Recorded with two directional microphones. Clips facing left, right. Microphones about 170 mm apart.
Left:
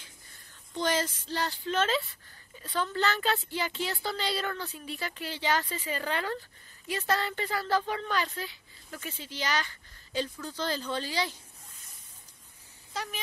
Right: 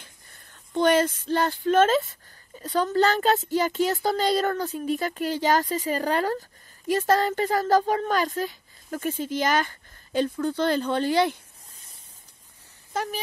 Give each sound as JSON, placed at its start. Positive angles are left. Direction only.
{"t": 0.7, "sound": "speech", "side_deg": -60}
{"t": 12.9, "sound": "speech", "side_deg": -45}